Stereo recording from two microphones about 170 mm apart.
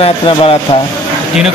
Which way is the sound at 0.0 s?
35° left (ahead or behind).